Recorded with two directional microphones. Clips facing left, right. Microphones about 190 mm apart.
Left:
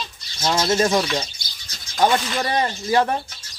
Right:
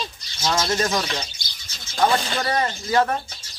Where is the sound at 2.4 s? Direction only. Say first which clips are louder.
Left 1 dB; 25° left (ahead or behind).